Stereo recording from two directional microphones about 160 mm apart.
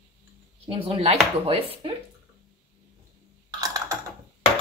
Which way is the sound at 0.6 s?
35° right (ahead or behind).